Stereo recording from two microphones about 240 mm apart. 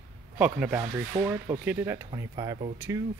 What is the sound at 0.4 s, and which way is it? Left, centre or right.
Speech, centre.